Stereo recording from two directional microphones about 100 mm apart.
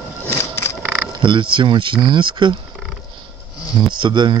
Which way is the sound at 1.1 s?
55° right (ahead or behind).